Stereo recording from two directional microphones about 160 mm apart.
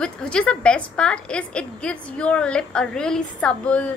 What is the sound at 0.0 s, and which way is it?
A woman's voice, 5° left (ahead or behind).